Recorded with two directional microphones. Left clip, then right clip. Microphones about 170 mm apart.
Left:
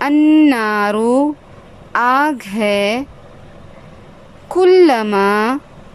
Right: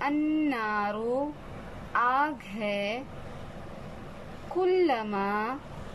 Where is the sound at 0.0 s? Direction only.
55° left (ahead or behind).